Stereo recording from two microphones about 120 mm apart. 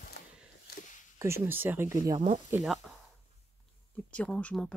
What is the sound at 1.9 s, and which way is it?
Speech, 30° right (ahead or behind).